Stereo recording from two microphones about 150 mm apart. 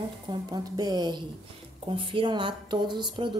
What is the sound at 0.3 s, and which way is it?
A woman's voice, 30° right (ahead or behind).